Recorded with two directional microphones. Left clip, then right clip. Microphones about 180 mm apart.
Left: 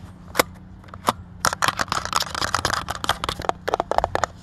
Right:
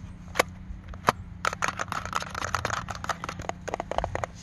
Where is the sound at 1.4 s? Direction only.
35° left (ahead or behind).